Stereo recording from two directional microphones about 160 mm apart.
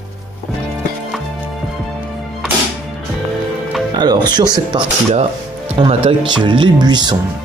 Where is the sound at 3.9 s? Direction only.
25° right (ahead or behind).